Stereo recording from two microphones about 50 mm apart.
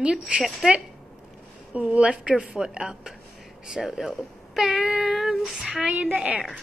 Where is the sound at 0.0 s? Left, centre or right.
Right.